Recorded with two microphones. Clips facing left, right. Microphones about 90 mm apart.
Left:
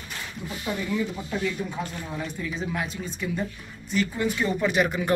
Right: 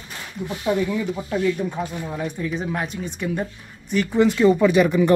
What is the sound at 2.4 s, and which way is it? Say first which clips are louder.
Speech: right 3 dB; 50° right (ahead or behind).